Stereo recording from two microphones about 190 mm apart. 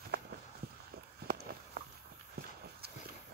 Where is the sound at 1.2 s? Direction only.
55° right (ahead or behind).